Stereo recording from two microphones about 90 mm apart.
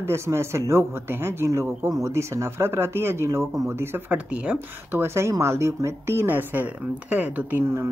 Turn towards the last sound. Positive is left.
turn(degrees=-30)  # may be behind; listen again after turning